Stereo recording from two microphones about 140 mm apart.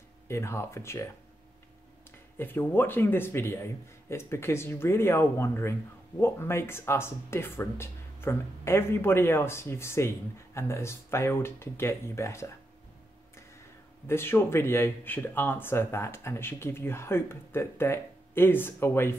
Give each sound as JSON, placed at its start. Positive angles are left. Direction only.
{"t": 0.3, "sound": "speech", "side_deg": 20}
{"t": 2.3, "sound": "a man's voice", "side_deg": 15}
{"t": 14.0, "sound": "a man's voice", "side_deg": 15}